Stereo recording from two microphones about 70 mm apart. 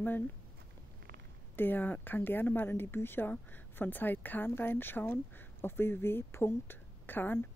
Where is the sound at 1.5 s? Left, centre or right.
Left.